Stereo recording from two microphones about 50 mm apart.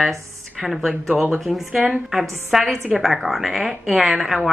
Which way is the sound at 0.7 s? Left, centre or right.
Centre.